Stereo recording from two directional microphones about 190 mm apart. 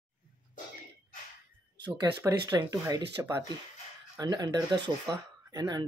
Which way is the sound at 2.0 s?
20° right (ahead or behind).